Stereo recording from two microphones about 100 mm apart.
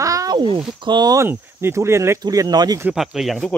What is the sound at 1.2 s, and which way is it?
Speech, 25° right (ahead or behind).